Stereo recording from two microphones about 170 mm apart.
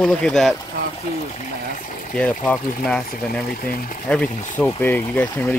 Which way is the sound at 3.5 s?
60° left (ahead or behind).